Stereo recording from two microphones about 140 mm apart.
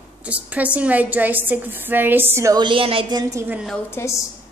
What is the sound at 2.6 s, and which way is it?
Speech, 40° right (ahead or behind).